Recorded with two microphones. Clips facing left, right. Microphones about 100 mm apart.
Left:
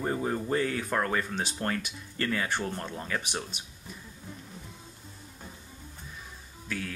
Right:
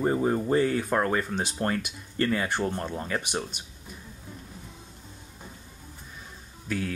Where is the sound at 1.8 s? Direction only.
5° right (ahead or behind).